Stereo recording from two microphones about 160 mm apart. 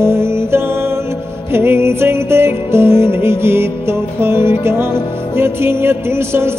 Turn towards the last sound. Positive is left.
turn(degrees=-15)  # may be behind; listen again after turning